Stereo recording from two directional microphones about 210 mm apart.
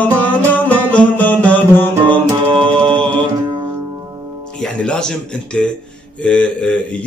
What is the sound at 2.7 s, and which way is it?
Mantra, 25° right (ahead or behind).